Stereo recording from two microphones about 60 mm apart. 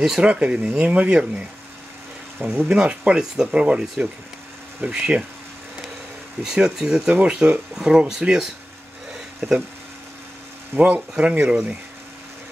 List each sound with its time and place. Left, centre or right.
0.2 s speech: centre
2.4 s speech: centre
6.4 s speech: centre
7.1 s speech: right
10.8 s speech: right